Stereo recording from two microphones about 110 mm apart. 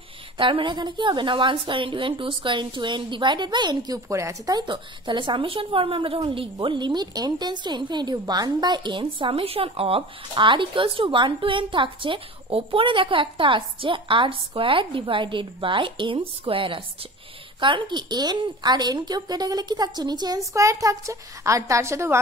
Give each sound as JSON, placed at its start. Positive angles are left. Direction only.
{"t": 0.4, "sound": "a woman's voice", "side_deg": -50}